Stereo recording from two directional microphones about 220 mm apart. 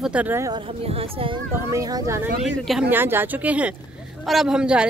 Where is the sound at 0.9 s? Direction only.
25° right (ahead or behind).